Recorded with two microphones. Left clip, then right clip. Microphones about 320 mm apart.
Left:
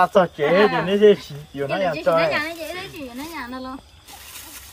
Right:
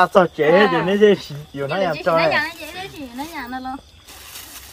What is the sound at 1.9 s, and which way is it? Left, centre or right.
Speech, centre.